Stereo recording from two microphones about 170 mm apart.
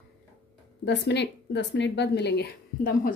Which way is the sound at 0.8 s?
85° left.